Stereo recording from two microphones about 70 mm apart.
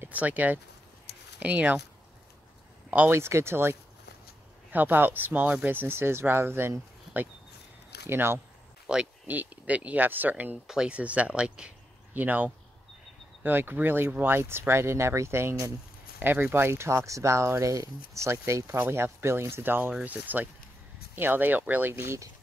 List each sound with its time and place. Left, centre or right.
0.0 s speech: right
3.1 s speech: right
8.9 s speech: centre
12.1 s speech: right